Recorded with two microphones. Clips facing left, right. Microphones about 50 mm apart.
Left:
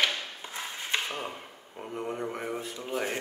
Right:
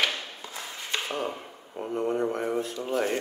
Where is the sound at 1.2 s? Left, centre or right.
Centre.